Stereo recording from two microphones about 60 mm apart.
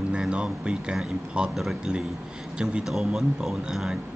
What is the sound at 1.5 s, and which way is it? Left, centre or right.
Speech, centre.